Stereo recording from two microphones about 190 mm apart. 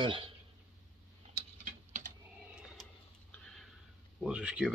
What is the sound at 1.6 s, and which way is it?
Typing, 40° right (ahead or behind).